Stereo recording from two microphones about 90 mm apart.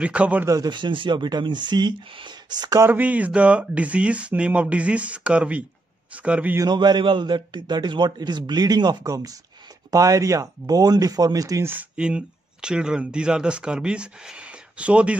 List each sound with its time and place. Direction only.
0.0 s speech: 15° right (ahead or behind)
0.7 s a man's voice: 60° right (ahead or behind)
2.9 s speech: 20° right (ahead or behind)
6.6 s a man's voice: 55° right (ahead or behind)
12.0 s speech: 10° right (ahead or behind)